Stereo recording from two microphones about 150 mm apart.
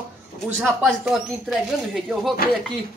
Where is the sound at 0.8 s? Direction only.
5° right (ahead or behind).